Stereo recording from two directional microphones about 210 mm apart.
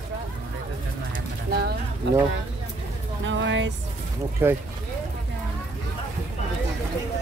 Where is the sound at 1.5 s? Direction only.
50° right (ahead or behind).